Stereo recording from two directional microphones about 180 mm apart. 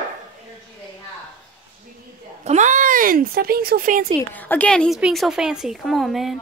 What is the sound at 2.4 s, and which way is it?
Speech, 40° right (ahead or behind).